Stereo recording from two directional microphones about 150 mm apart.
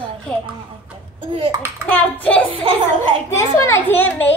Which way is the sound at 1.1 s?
35° right (ahead or behind).